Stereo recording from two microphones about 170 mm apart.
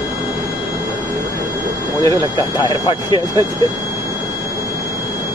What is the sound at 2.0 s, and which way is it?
Speech, 20° right (ahead or behind).